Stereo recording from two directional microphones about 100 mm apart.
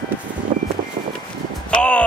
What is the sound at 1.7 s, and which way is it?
Music, 10° left (ahead or behind).